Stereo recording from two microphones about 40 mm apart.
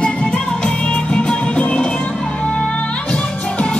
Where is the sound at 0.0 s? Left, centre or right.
Left.